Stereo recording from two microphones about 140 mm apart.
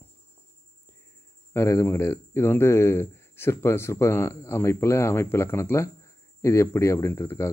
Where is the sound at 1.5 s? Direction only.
20° left (ahead or behind).